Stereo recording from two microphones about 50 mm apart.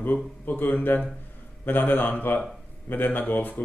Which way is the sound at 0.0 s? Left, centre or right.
Left.